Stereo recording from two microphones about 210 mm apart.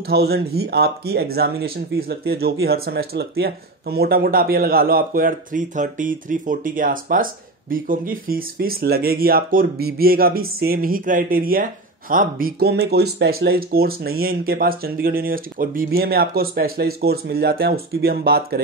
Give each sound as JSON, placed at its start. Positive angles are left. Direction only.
{"t": 0.0, "sound": "speech", "side_deg": -50}